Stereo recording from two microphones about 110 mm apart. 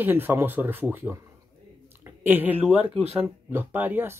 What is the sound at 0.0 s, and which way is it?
Speech, 20° right (ahead or behind).